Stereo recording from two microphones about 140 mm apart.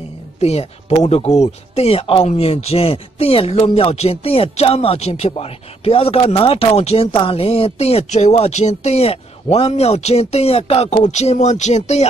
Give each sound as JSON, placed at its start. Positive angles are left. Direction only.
{"t": 0.4, "sound": "speech", "side_deg": 50}